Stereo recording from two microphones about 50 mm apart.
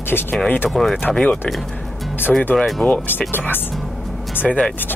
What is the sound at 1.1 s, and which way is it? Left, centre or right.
Speech, left.